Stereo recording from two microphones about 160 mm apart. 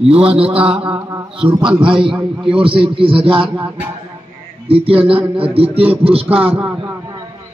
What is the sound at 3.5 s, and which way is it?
Speech, 10° right (ahead or behind).